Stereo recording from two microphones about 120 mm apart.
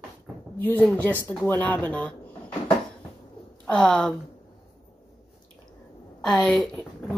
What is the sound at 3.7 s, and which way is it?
Speech, 5° left (ahead or behind).